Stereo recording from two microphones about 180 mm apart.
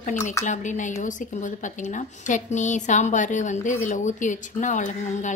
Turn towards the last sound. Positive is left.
turn(degrees=45)  # may be behind; listen again after turning